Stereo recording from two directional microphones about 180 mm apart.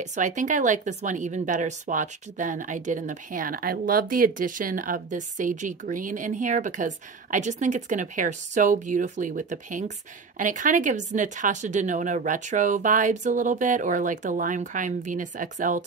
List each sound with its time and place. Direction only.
0.0 s a woman's voice: 40° right (ahead or behind)